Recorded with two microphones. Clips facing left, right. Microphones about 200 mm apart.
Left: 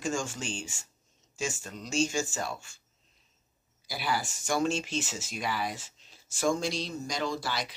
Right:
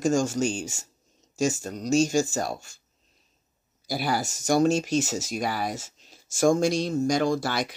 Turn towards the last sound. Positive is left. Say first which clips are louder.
# right 7 dB
turn(degrees=-50)  # may be behind; listen again after turning